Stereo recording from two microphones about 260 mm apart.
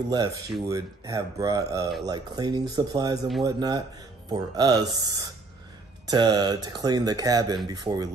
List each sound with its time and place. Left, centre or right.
0.1 s speech: centre